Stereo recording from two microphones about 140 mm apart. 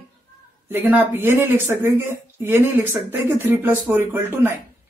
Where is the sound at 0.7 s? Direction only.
15° right (ahead or behind).